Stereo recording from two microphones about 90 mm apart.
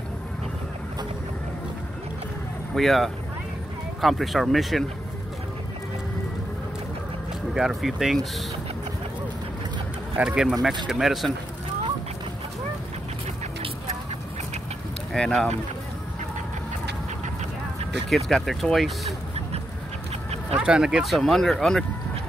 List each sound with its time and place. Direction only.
2.7 s speech: centre (ahead or behind)
7.5 s speech: 5° right (ahead or behind)
10.1 s speech: 10° right (ahead or behind)
15.1 s speech: 5° left (ahead or behind)
18.1 s speech: centre (ahead or behind)
20.5 s speech: 10° right (ahead or behind); by 21.8 s 5° left (ahead or behind)